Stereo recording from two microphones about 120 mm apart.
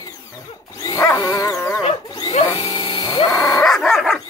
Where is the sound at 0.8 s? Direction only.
30° left (ahead or behind).